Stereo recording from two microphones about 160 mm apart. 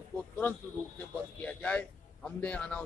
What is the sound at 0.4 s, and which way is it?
A man's voice, 10° left (ahead or behind).